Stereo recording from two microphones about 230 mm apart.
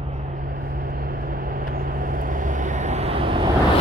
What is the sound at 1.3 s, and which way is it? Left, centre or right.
Vehicle, right.